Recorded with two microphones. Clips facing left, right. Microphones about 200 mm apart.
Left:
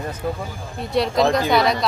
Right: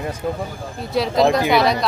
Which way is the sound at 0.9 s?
Centre (ahead or behind).